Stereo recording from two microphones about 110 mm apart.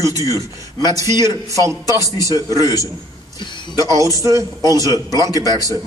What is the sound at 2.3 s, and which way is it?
Speech, 35° left (ahead or behind).